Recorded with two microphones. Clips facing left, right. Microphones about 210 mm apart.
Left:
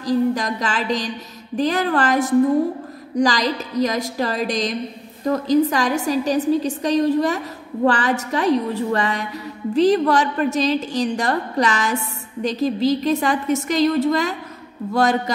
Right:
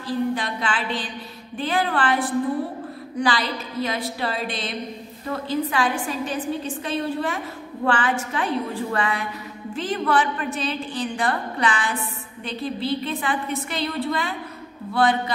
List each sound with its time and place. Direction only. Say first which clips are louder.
0.0 s a woman's voice: left 5 dB; 40° left (ahead or behind)